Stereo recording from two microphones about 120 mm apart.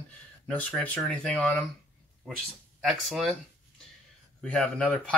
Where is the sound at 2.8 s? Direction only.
Centre (ahead or behind).